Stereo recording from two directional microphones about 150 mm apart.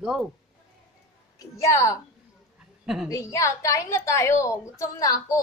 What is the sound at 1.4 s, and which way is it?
Speech, 20° left (ahead or behind).